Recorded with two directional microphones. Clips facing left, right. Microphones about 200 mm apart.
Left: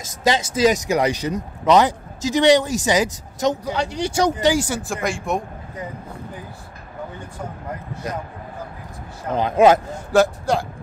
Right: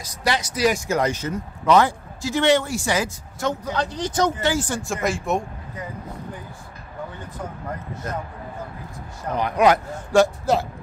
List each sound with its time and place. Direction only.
0.4 s speech: 25° left (ahead or behind); by 5.4 s centre (ahead or behind)
9.3 s speech: 25° left (ahead or behind)
10.1 s speech: centre (ahead or behind)